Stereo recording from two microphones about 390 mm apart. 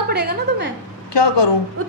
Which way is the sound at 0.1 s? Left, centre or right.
Right.